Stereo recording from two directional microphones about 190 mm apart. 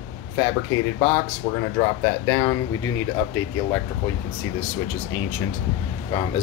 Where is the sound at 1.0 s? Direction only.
30° left (ahead or behind).